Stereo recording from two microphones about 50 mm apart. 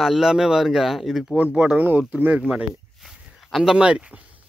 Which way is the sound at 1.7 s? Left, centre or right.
Right.